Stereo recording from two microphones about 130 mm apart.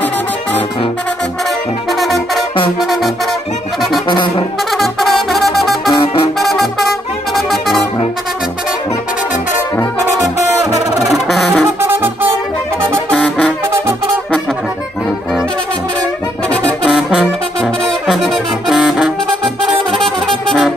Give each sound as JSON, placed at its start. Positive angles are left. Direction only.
{"t": 1.9, "sound": "brass instrument", "side_deg": 0}
{"t": 2.8, "sound": "music", "side_deg": 0}
{"t": 4.1, "sound": "brass instrument", "side_deg": 35}
{"t": 4.7, "sound": "brass instrument", "side_deg": 0}
{"t": 6.4, "sound": "music", "side_deg": 0}
{"t": 11.0, "sound": "music", "side_deg": 0}
{"t": 11.8, "sound": "music", "side_deg": -15}
{"t": 13.1, "sound": "brass instrument", "side_deg": 5}
{"t": 16.8, "sound": "brass instrument", "side_deg": -5}
{"t": 20.4, "sound": "music", "side_deg": 0}